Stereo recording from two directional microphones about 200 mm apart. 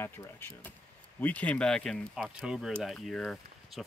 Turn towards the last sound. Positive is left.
turn(degrees=0)  # may be behind; listen again after turning